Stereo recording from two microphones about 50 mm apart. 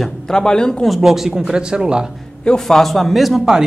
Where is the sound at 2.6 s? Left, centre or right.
Centre.